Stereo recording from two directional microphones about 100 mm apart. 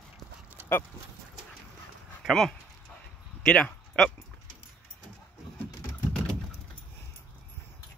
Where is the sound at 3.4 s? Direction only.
5° left (ahead or behind).